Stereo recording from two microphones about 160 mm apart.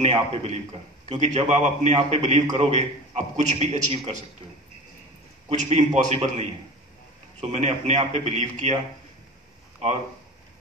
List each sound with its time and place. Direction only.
0.1 s a man's voice: 35° right (ahead or behind)
5.5 s a man's voice: 45° right (ahead or behind)